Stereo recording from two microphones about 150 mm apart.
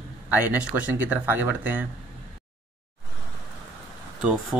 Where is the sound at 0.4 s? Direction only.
10° right (ahead or behind).